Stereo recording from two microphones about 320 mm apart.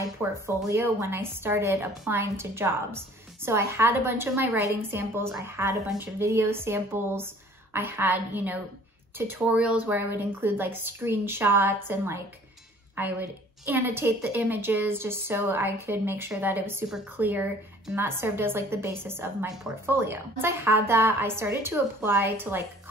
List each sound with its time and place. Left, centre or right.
0.0 s a woman's voice: centre